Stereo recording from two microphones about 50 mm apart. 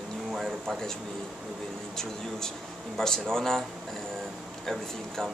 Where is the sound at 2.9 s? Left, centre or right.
Centre.